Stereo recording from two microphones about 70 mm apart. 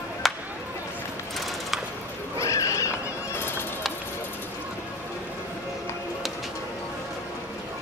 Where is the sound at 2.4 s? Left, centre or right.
Left.